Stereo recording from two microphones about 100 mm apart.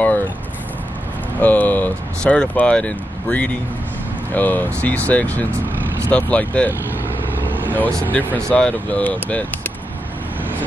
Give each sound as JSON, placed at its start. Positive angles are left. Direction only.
{"t": 1.4, "sound": "speech", "side_deg": 15}
{"t": 7.4, "sound": "vehicle", "side_deg": -20}
{"t": 8.2, "sound": "speech", "side_deg": 10}